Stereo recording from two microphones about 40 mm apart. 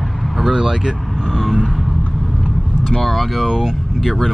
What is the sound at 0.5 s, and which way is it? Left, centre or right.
Speech, centre.